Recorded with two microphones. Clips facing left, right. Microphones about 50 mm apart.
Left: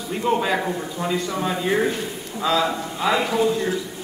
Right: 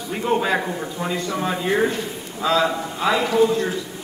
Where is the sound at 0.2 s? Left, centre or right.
Centre.